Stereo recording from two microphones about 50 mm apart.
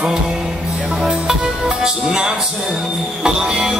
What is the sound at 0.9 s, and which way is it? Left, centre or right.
Music, centre.